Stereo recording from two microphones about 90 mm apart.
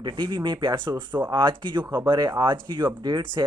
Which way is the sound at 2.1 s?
50° right (ahead or behind).